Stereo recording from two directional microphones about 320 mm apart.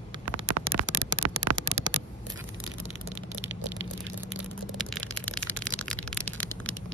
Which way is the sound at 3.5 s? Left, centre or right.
Right.